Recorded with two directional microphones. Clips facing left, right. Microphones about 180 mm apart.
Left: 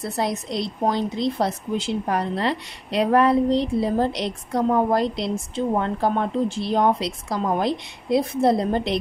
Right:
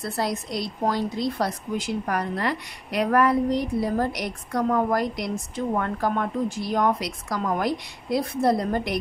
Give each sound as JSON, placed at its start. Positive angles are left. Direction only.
{"t": 0.0, "sound": "speech", "side_deg": 20}